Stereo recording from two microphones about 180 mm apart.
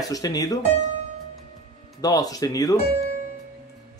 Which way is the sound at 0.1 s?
20° left (ahead or behind).